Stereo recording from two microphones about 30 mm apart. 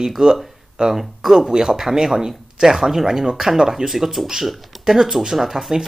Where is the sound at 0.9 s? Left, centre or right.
Centre.